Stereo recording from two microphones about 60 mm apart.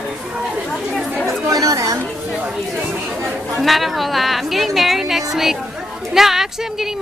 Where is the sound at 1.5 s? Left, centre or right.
Right.